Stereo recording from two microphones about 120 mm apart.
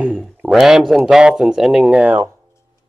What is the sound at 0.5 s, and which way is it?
Speech, 5° right (ahead or behind).